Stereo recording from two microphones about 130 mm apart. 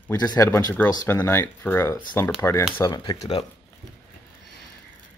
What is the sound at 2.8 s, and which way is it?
Speech, 35° left (ahead or behind).